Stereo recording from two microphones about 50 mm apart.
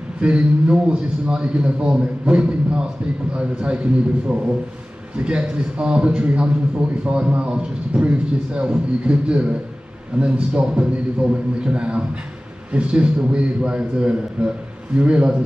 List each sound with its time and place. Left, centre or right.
0.2 s a man's voice: right